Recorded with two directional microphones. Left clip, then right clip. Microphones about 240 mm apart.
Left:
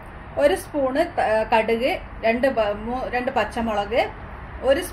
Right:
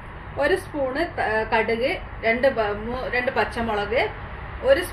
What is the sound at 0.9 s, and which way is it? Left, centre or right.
A woman's voice, left.